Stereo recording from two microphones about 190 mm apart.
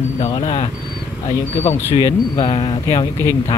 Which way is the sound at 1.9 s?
30° left (ahead or behind).